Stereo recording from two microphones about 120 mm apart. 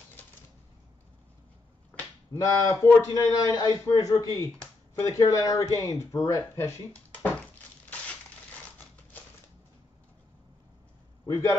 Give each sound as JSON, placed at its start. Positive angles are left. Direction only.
{"t": 1.9, "sound": "finger snapping", "side_deg": 15}
{"t": 2.4, "sound": "a man's voice", "side_deg": 25}
{"t": 6.9, "sound": "a sound", "side_deg": 10}